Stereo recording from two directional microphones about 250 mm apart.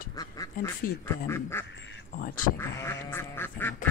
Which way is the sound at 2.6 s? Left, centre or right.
Centre.